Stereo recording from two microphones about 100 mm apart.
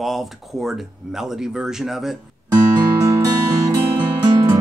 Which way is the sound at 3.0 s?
30° right (ahead or behind).